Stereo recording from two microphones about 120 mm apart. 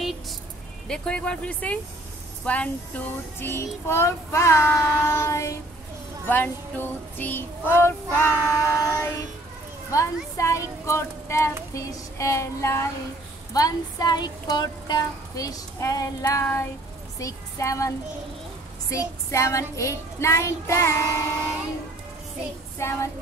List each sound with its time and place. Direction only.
0.8 s child singing: 5° left (ahead or behind); by 21.1 s 25° left (ahead or behind)
22.8 s child singing: 20° left (ahead or behind)